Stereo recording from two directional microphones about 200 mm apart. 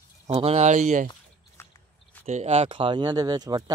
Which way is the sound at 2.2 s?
35° right (ahead or behind).